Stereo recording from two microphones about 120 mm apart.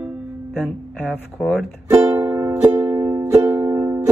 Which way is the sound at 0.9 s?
15° left (ahead or behind).